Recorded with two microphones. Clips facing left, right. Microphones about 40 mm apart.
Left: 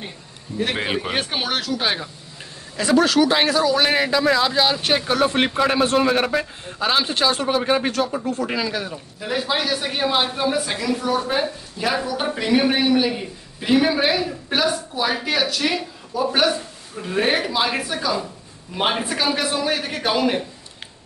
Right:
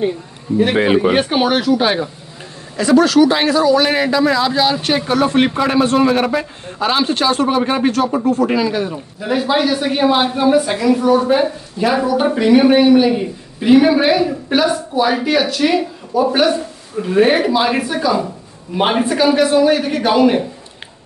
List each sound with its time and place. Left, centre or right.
0.6 s a man's voice: centre
2.8 s a man's voice: centre
6.3 s a man's voice: centre
19.0 s a man's voice: centre